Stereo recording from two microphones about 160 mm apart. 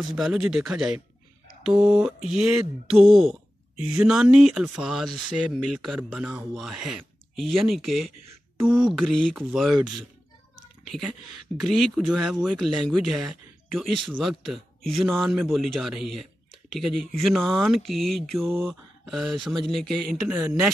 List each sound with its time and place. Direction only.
0.0 s a man's voice: centre (ahead or behind)
10.8 s a sound: centre (ahead or behind)
11.6 s a man's voice: centre (ahead or behind)